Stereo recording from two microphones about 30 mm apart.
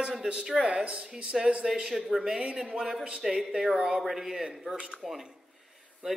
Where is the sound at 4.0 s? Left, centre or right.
Centre.